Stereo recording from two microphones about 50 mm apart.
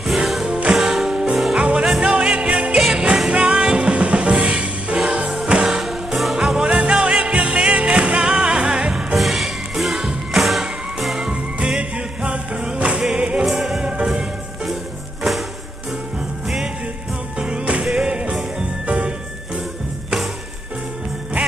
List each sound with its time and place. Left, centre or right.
0.0 s music: centre
1.6 s music: centre
5.7 s music: centre
9.1 s music: centre
12.3 s music: right
13.5 s music: centre
16.4 s music: centre
17.4 s music: centre
17.8 s music: centre
18.1 s music: right